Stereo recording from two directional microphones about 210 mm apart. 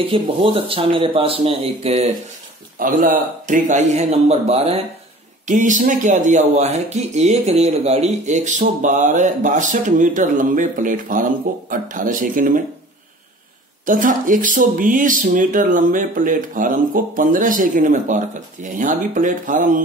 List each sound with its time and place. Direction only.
0.1 s speech: 25° right (ahead or behind)
2.8 s speech: 40° right (ahead or behind)
13.8 s speech: 40° right (ahead or behind)